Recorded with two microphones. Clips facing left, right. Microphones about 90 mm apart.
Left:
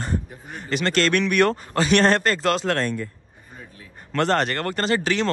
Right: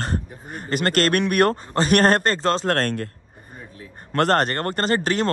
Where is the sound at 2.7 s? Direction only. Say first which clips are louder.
Right 2 dB; 65° right (ahead or behind).